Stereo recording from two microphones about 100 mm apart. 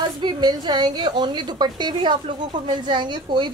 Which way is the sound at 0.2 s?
45° right (ahead or behind).